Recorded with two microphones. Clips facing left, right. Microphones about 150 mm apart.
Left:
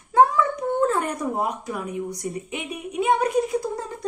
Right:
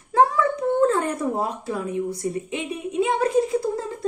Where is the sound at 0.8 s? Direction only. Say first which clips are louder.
Right 2 dB; 25° right (ahead or behind).